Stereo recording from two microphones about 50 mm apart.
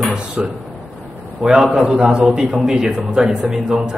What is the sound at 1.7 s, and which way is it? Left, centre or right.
Speech, centre.